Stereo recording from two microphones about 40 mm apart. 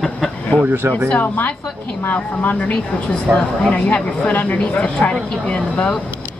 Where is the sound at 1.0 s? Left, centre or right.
Left.